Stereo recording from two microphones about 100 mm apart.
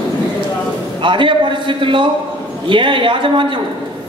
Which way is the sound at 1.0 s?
55° right (ahead or behind).